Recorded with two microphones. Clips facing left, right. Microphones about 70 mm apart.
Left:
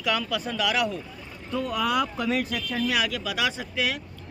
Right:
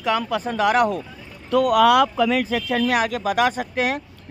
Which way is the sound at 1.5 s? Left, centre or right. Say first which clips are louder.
Right 11 dB; right.